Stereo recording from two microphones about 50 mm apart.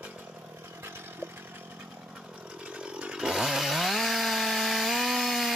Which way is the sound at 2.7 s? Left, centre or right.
Right.